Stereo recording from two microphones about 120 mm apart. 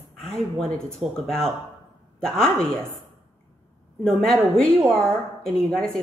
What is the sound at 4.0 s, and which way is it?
A woman's voice, 5° left (ahead or behind).